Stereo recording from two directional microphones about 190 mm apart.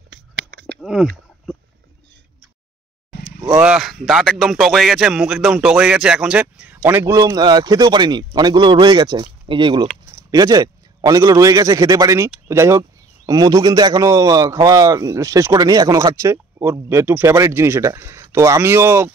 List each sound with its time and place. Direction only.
0.1 s a sound: 70° right (ahead or behind)
0.7 s speech: centre (ahead or behind)
3.6 s a man's voice: 5° right (ahead or behind)